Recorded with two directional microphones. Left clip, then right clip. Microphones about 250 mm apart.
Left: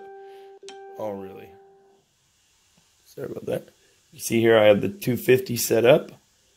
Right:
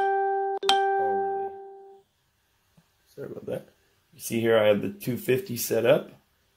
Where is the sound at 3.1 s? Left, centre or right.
Left.